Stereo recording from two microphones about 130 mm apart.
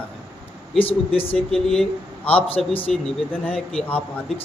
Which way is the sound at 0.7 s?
45° left (ahead or behind).